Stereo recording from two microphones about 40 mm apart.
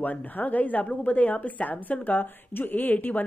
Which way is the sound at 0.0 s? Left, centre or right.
Left.